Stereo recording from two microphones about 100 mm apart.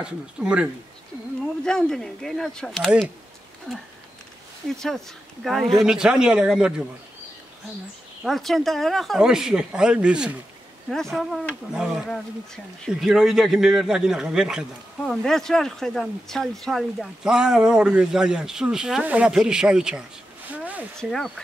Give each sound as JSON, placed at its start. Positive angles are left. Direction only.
{"t": 0.0, "sound": "speech", "side_deg": -10}
{"t": 1.6, "sound": "speech", "side_deg": 5}
{"t": 4.7, "sound": "speech", "side_deg": 5}
{"t": 8.2, "sound": "speech", "side_deg": 0}
{"t": 10.9, "sound": "speech", "side_deg": 5}
{"t": 20.5, "sound": "a sound", "side_deg": -15}
{"t": 21.0, "sound": "speech", "side_deg": 5}